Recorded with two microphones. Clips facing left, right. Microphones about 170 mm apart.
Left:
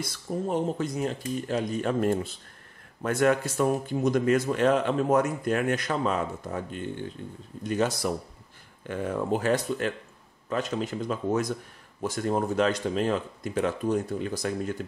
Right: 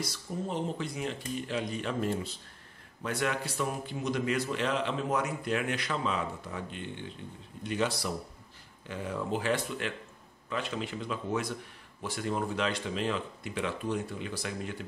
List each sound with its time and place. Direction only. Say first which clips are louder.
0.0 s speech: left 5 dB; 50° left (ahead or behind)